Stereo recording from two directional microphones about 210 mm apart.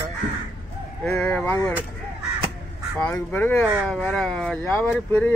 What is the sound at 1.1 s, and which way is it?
Speech, 10° left (ahead or behind).